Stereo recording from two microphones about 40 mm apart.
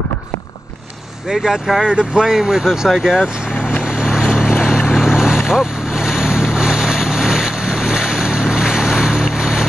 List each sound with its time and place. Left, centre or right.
1.3 s speech: centre
3.8 s vehicle: right
4.9 s boat: centre